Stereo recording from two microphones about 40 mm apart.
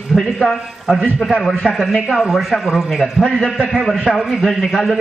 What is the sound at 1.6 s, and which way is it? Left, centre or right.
Speech, left.